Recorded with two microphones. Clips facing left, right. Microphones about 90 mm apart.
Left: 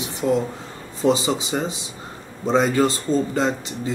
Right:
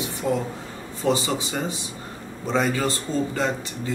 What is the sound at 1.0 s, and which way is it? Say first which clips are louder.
Speech: left 4 dB; 20° left (ahead or behind).